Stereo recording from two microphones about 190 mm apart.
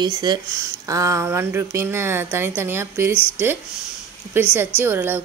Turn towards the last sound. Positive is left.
turn(degrees=-10)  # may be behind; listen again after turning